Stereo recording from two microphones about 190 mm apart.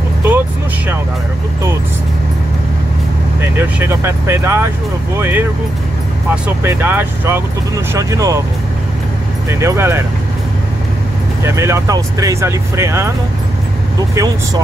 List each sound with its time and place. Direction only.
3.3 s speech: 10° right (ahead or behind)
9.5 s speech: 15° right (ahead or behind)
11.4 s speech: 15° right (ahead or behind)